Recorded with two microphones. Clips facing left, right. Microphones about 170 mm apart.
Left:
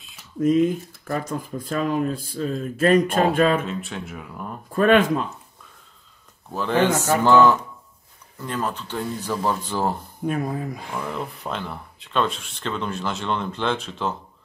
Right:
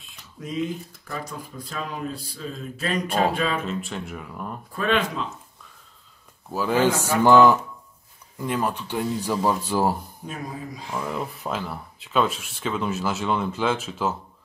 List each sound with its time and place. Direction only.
0.4 s speech: 50° left (ahead or behind)
3.6 s speech: centre (ahead or behind)
4.7 s speech: 50° left (ahead or behind)
6.5 s speech: 5° right (ahead or behind)
10.2 s speech: 55° left (ahead or behind)
11.0 s speech: 5° right (ahead or behind)